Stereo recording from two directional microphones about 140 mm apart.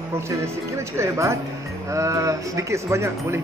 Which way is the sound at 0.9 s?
20° right (ahead or behind).